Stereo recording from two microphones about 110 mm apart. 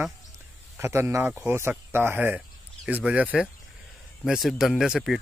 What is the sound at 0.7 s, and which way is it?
Speech, 25° right (ahead or behind).